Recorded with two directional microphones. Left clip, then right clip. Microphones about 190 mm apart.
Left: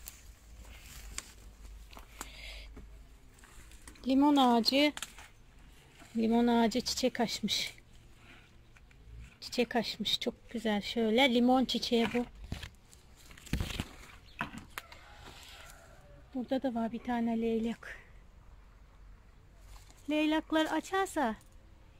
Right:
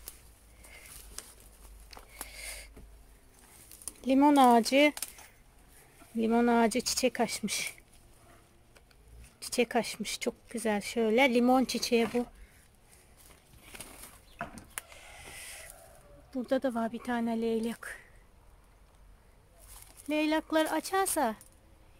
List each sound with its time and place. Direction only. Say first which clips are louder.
3.8 s a sound: right 3 dB; 15° right (ahead or behind)
4.3 s speech: right 5 dB; 15° right (ahead or behind)
6.1 s speech: right 3 dB; 10° right (ahead or behind)
9.4 s speech: right 3 dB; 10° right (ahead or behind)
14.4 s a sound: left 1 dB; centre (ahead or behind)
16.3 s speech: right 4 dB; 15° right (ahead or behind); by 18.0 s centre (ahead or behind)
20.1 s speech: right 1 dB; centre (ahead or behind)